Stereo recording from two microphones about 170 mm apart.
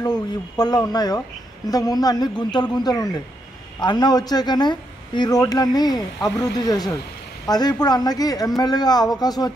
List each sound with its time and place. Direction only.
0.0 s speech: 25° left (ahead or behind)